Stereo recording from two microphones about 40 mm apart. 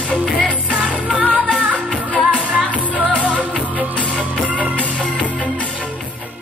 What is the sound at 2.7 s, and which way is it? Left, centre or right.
Music, right.